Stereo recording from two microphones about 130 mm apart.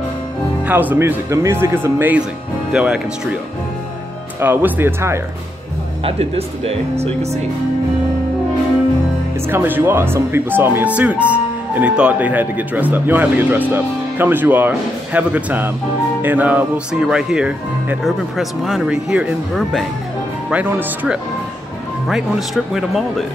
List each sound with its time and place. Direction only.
0.7 s speech: 15° right (ahead or behind)
4.4 s speech: 15° right (ahead or behind)
6.0 s speech: 50° right (ahead or behind)
9.5 s speech: 15° right (ahead or behind)